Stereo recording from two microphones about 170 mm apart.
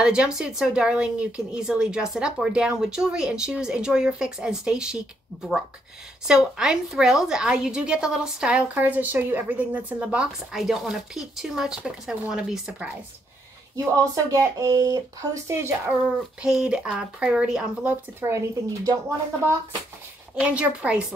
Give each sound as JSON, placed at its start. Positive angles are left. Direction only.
{"t": 0.0, "sound": "a woman's voice", "side_deg": -5}
{"t": 6.2, "sound": "a woman's voice", "side_deg": -5}
{"t": 13.9, "sound": "speech", "side_deg": -20}
{"t": 16.2, "sound": "speech", "side_deg": -5}